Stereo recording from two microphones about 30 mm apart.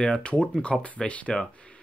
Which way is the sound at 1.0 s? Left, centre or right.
Left.